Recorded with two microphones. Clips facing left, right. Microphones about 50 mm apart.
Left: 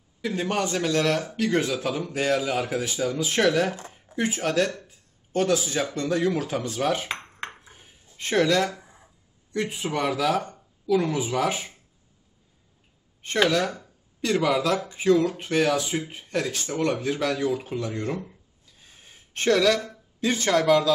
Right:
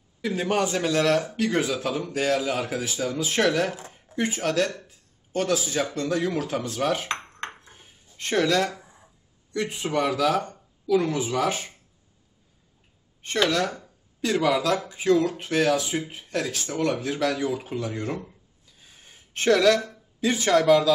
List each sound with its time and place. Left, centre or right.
0.2 s speech: centre
13.2 s speech: centre
18.8 s a sound: centre